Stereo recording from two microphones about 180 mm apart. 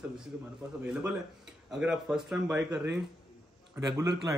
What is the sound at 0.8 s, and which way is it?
A man's voice, 5° right (ahead or behind).